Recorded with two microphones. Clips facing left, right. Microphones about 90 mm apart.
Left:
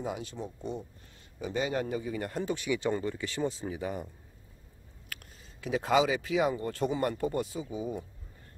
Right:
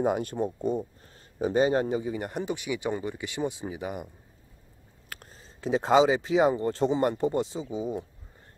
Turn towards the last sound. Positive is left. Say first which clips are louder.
# right 4 dB
turn(degrees=-20)  # may be behind; listen again after turning